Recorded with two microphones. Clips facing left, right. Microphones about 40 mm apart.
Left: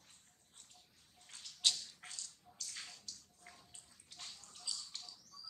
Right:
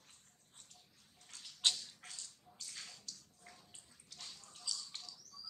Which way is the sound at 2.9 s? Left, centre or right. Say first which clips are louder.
Even; centre.